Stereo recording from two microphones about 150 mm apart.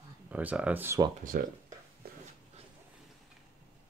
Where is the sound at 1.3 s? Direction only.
75° right (ahead or behind).